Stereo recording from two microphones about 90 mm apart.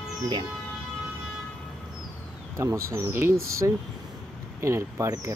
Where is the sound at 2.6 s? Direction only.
35° right (ahead or behind).